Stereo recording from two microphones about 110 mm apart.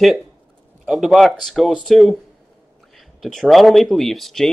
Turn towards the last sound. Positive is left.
turn(degrees=0)  # may be behind; listen again after turning